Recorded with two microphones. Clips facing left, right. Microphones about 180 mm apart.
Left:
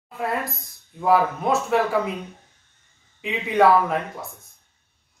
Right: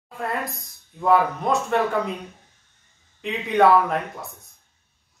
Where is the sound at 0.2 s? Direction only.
Centre (ahead or behind).